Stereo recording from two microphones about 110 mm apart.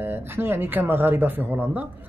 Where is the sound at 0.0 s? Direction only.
20° right (ahead or behind).